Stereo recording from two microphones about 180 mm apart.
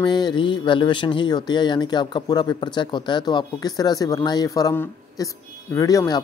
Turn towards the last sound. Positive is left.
turn(degrees=20)  # may be behind; listen again after turning